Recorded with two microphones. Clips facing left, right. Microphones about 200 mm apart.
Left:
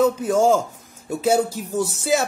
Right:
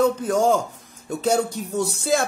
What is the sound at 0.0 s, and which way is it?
Speech, 5° left (ahead or behind).